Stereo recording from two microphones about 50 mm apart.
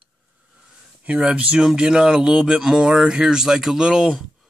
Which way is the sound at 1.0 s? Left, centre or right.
Right.